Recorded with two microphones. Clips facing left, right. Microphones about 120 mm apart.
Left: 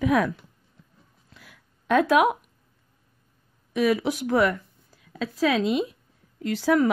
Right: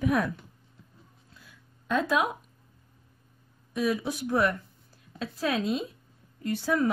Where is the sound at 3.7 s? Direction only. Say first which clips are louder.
Left 6 dB; 80° left.